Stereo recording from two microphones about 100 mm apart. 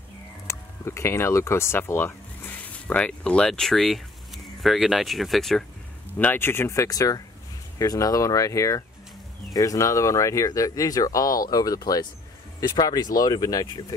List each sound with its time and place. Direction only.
0.5 s speech: 25° left (ahead or behind); by 5.7 s 5° left (ahead or behind)
6.1 s speech: 20° left (ahead or behind); by 13.9 s 40° left (ahead or behind)